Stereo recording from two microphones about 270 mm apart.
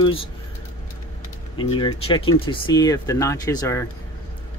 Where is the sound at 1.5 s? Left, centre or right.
Centre.